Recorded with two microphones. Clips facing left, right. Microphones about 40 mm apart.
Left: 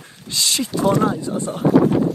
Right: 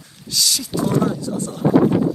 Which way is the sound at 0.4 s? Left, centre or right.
Left.